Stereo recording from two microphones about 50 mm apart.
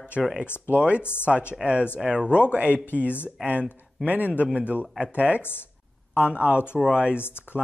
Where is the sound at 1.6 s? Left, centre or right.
Right.